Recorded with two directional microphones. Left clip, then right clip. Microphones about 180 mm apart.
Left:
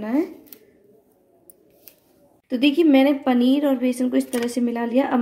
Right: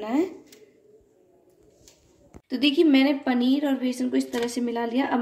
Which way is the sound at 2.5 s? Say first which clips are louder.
Left 3 dB; 35° left (ahead or behind).